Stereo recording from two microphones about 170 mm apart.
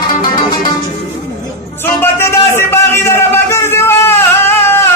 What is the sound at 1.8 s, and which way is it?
Music, 15° left (ahead or behind).